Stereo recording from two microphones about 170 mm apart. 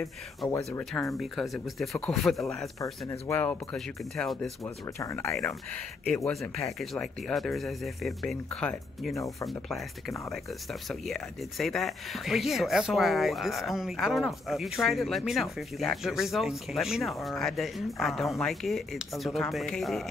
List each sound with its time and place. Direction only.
0.4 s speech: centre (ahead or behind)
2.8 s speech: 15° left (ahead or behind)
4.9 s speech: 15° left (ahead or behind)
5.4 s speech: 5° left (ahead or behind)
9.1 s speech: 20° left (ahead or behind)
9.5 s speech: centre (ahead or behind)